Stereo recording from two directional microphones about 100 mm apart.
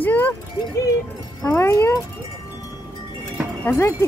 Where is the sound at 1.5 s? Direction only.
25° left (ahead or behind).